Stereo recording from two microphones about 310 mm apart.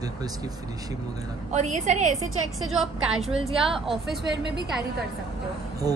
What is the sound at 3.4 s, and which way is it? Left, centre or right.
Speech, centre.